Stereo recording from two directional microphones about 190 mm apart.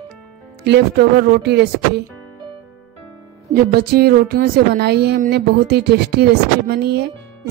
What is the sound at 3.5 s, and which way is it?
Speech, 55° right (ahead or behind).